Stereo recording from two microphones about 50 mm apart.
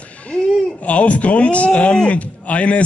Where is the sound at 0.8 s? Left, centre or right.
Left.